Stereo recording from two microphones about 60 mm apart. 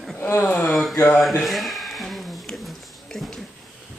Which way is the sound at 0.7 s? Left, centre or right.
Centre.